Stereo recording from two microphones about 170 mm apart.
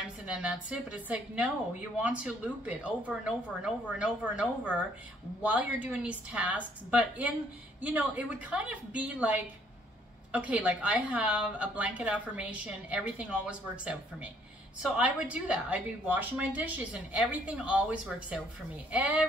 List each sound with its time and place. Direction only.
0.0 s a woman's voice: 5° right (ahead or behind)